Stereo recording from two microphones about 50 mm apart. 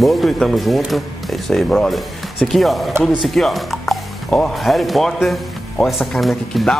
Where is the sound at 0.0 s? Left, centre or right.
Centre.